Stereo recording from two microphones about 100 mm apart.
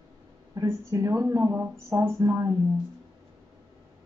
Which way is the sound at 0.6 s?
30° right (ahead or behind).